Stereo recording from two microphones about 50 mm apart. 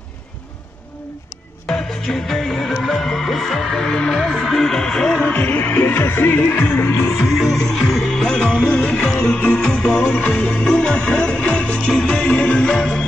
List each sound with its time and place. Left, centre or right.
2.2 s music: centre
5.2 s music: left
6.4 s music: left
7.2 s music: centre
8.6 s music: left
8.9 s music: centre